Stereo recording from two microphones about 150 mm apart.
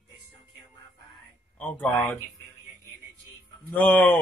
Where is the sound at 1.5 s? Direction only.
10° left (ahead or behind).